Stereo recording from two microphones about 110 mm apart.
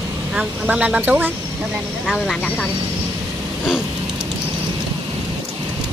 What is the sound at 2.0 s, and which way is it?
Speech, centre (ahead or behind).